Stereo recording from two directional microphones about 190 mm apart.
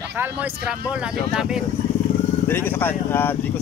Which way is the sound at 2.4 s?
10° left (ahead or behind).